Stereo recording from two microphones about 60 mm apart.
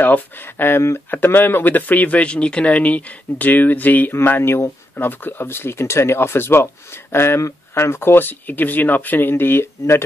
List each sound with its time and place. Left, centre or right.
0.0 s speech: left